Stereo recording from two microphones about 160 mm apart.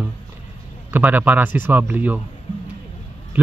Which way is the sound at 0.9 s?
10° right (ahead or behind).